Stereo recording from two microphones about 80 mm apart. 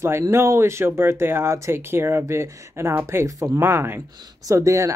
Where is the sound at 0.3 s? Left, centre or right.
Right.